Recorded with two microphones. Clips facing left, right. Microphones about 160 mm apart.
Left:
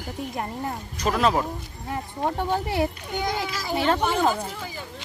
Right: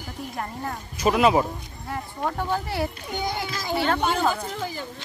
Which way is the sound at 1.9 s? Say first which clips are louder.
Left 2 dB; 25° left (ahead or behind).